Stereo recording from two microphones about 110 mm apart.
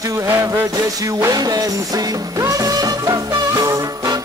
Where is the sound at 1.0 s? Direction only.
35° right (ahead or behind).